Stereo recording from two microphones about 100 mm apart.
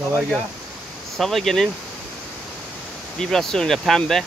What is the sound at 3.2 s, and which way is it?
Speech, 5° left (ahead or behind).